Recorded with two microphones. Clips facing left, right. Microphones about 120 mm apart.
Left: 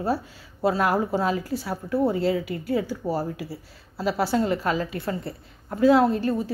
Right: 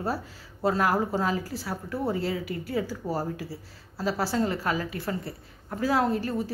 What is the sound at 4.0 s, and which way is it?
A woman's voice, 20° left (ahead or behind).